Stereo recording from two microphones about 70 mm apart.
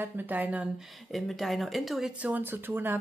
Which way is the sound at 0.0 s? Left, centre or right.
Right.